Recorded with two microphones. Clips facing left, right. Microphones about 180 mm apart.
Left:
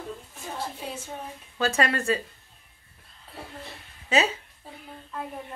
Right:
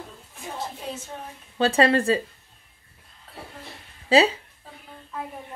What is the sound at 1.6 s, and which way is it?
Speech, 30° right (ahead or behind).